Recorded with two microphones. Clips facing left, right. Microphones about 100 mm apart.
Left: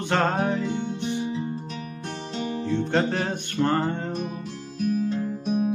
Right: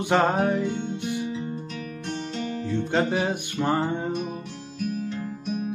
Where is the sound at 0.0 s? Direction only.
10° right (ahead or behind).